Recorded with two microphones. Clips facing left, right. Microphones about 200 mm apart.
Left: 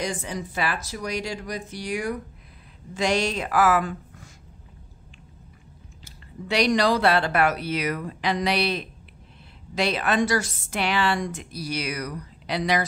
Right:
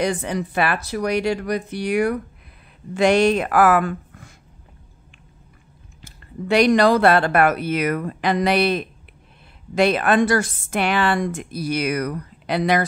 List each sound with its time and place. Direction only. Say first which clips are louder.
0.0 s speech: right 7 dB; 60° right (ahead or behind)
6.0 s a woman's voice: right 8 dB; 50° right (ahead or behind)